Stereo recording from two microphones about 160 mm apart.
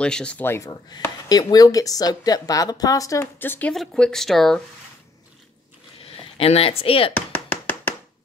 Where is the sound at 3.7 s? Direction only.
Centre (ahead or behind).